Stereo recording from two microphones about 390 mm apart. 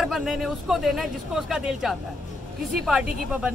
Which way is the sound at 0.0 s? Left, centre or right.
Centre.